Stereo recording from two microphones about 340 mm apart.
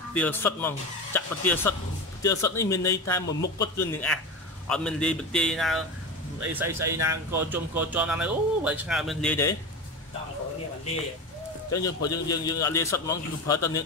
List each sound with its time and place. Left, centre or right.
0.1 s a man's voice: centre
3.3 s speech: left
3.5 s a man's voice: centre
11.7 s a man's voice: centre